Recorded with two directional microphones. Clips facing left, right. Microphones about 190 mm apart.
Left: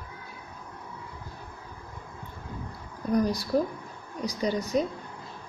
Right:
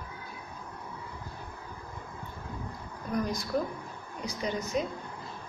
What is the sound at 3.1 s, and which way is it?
A woman's voice, 35° left (ahead or behind).